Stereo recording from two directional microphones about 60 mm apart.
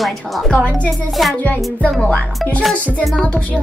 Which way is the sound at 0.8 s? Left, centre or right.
Centre.